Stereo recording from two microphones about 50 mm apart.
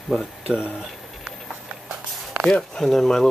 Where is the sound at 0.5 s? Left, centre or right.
Left.